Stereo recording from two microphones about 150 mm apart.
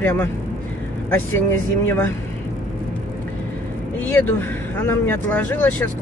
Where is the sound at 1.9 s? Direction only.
10° left (ahead or behind).